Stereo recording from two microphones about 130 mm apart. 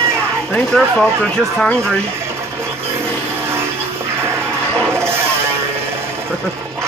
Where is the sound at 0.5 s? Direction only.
5° left (ahead or behind).